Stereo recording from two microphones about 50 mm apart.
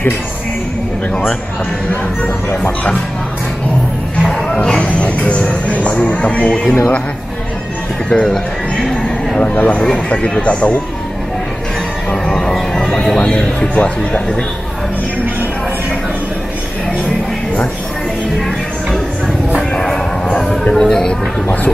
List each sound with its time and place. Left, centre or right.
4.2 s music: centre
4.6 s speech: left
8.1 s speech: centre
8.9 s a sound: centre
9.4 s speech: left
12.1 s speech: centre
19.7 s a sound: centre
20.7 s speech: centre
21.1 s speech: left